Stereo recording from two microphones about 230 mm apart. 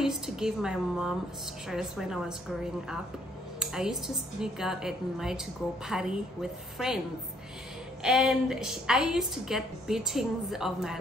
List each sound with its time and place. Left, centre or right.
0.0 s a woman's voice: centre
8.0 s a woman's voice: centre